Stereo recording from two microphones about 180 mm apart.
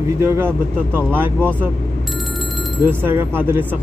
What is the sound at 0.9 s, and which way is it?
Speech, 10° right (ahead or behind).